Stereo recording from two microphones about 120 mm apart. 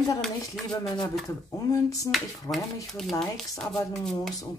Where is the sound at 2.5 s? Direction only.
30° left (ahead or behind).